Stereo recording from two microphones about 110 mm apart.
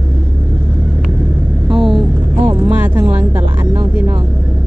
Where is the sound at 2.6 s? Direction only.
15° right (ahead or behind).